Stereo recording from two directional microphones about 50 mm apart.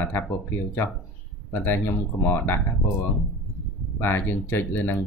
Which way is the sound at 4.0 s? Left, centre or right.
Left.